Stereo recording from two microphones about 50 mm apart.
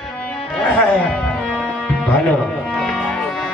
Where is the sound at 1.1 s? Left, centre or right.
Centre.